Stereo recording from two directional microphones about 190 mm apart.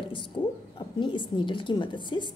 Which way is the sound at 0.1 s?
25° left (ahead or behind).